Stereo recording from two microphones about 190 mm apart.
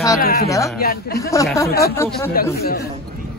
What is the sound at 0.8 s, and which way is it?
Speech, 50° left (ahead or behind).